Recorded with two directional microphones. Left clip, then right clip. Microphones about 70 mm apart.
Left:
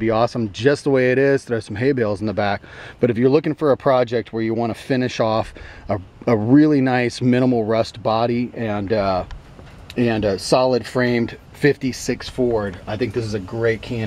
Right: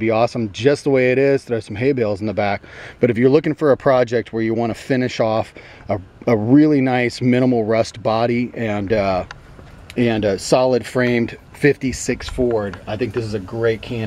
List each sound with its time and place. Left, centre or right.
0.0 s speech: centre
3.0 s speech: centre
7.6 s speech: right; by 14.0 s centre